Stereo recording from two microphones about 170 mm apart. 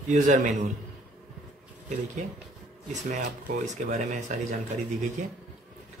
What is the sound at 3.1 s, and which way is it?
Speech, 50° right (ahead or behind).